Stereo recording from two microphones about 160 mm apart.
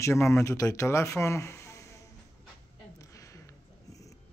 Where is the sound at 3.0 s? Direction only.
20° left (ahead or behind).